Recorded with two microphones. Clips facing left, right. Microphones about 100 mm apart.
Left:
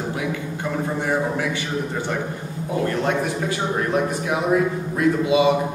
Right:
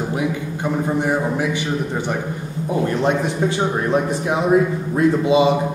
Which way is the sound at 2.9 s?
20° right (ahead or behind).